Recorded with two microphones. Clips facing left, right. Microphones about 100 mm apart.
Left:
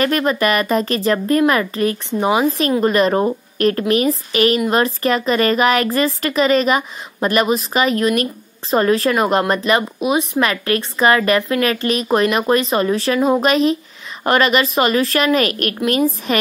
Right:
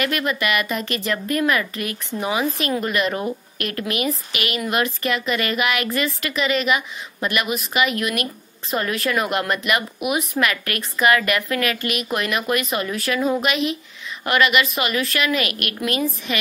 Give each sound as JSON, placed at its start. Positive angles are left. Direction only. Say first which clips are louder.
{"t": 0.0, "sound": "speech", "louder": "left 6 dB", "side_deg": 35}